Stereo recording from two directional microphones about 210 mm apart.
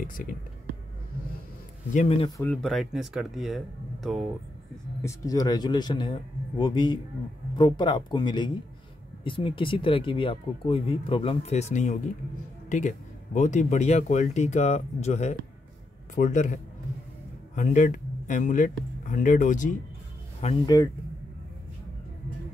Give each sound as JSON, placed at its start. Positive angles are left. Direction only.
{"t": 2.0, "sound": "speech", "side_deg": 25}
{"t": 2.4, "sound": "speech", "side_deg": 5}
{"t": 5.0, "sound": "speech", "side_deg": 15}
{"t": 17.6, "sound": "speech", "side_deg": 35}
{"t": 20.6, "sound": "speech", "side_deg": 15}